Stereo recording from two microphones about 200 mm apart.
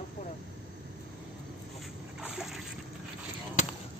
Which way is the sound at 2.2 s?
Centre (ahead or behind).